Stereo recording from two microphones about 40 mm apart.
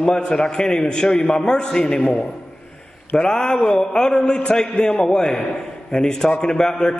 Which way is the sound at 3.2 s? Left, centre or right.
Centre.